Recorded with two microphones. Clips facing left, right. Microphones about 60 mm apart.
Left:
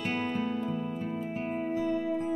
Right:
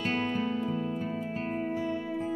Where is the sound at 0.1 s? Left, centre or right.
Right.